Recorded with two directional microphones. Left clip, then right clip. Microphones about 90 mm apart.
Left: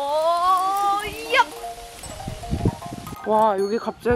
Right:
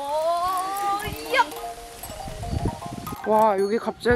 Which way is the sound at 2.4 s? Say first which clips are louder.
Left 4 dB; 20° right (ahead or behind).